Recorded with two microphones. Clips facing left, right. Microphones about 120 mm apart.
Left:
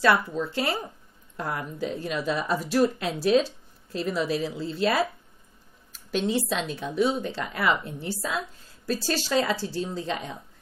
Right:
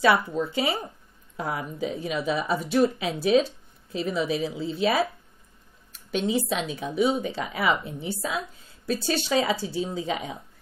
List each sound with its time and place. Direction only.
0.0 s speech: 5° right (ahead or behind)